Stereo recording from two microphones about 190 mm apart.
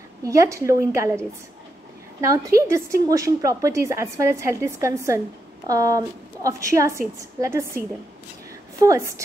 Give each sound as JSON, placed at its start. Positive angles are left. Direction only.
{"t": 0.2, "sound": "a woman's voice", "side_deg": -15}
{"t": 2.2, "sound": "a woman's voice", "side_deg": -15}
{"t": 8.8, "sound": "a woman's voice", "side_deg": -15}